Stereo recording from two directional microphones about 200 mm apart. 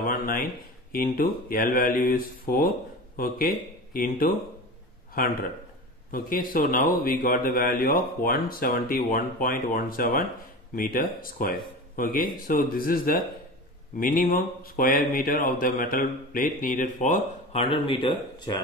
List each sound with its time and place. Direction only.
0.0 s a sound: 45° left (ahead or behind)
0.9 s speech: 45° left (ahead or behind)
6.1 s speech: 45° left (ahead or behind); by 18.6 s 25° left (ahead or behind)